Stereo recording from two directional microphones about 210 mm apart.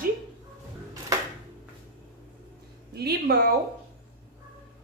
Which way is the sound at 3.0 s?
50° right (ahead or behind).